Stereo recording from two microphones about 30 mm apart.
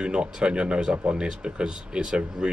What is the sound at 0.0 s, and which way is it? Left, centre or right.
Speech, right.